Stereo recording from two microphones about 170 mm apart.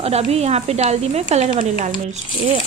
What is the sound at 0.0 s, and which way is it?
A woman's voice, 40° right (ahead or behind).